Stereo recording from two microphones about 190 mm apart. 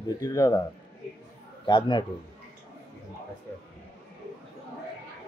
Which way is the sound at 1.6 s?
25° left (ahead or behind).